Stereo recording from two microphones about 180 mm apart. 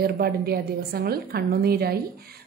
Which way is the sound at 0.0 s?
60° right (ahead or behind).